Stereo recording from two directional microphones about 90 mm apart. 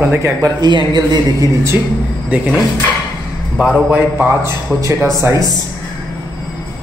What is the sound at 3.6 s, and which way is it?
Speech, 10° right (ahead or behind).